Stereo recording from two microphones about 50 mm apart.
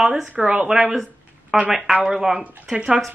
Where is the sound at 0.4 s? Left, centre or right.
Centre.